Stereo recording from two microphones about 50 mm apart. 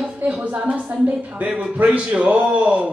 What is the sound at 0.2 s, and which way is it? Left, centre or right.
A woman's voice, right.